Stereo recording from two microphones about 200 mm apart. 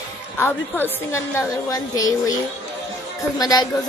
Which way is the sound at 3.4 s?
20° left (ahead or behind).